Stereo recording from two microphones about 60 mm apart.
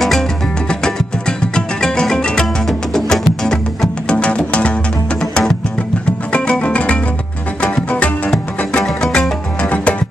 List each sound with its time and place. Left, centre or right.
1.5 s music: centre
6.6 s music: left
8.8 s music: centre
9.6 s music: left